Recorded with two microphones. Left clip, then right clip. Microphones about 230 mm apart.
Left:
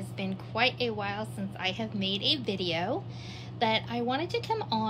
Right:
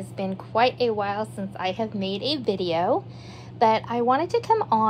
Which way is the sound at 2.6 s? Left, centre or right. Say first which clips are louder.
Right 7 dB; right.